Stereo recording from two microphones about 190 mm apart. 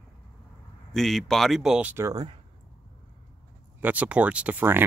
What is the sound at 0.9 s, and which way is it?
Speech, centre (ahead or behind).